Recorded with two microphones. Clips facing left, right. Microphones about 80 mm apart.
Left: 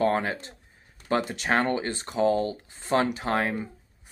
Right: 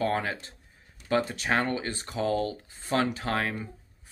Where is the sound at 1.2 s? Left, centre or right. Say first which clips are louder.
Left 1 dB; left.